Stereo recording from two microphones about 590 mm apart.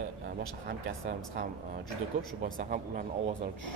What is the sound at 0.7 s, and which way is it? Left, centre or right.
Speech, centre.